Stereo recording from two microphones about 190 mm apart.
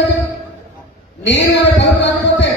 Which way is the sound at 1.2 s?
70° left (ahead or behind).